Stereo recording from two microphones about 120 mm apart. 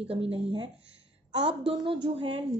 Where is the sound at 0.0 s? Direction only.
55° right (ahead or behind).